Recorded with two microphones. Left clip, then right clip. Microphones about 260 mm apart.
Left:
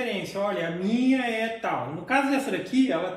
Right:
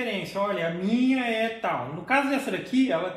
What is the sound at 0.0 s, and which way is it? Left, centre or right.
Speech, centre.